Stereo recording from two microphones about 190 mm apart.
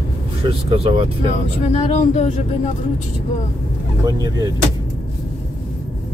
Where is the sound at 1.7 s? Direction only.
35° left (ahead or behind).